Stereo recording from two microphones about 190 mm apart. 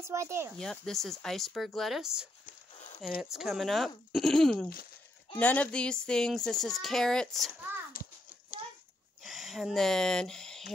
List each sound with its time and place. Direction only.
0.0 s speech: 15° right (ahead or behind)
0.6 s speech: 5° left (ahead or behind)
8.0 s a sound: 50° left (ahead or behind)
9.2 s speech: centre (ahead or behind)